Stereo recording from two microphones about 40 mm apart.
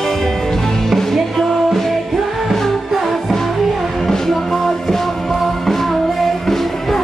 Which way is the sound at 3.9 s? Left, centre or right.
Centre.